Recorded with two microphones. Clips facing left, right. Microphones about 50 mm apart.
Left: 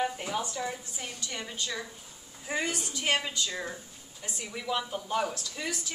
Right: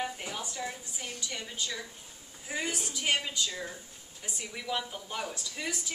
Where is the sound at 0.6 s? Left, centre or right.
Centre.